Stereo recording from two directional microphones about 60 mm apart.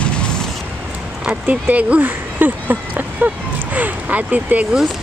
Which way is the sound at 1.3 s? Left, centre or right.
Right.